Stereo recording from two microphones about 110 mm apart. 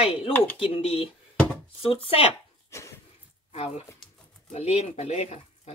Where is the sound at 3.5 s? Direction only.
70° left (ahead or behind).